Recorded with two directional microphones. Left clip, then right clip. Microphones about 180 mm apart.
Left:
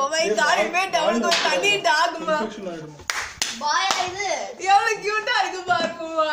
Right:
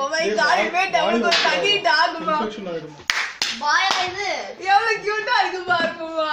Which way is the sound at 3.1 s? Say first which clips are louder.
Right 5 dB; 55° left (ahead or behind).